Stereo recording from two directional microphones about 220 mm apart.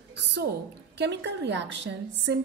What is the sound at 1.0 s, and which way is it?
Speech, 50° right (ahead or behind).